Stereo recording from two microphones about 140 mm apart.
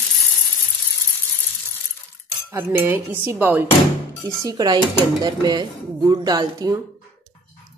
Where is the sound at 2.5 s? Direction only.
15° right (ahead or behind).